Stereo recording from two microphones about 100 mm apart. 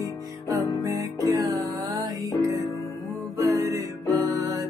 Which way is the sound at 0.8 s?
35° right (ahead or behind).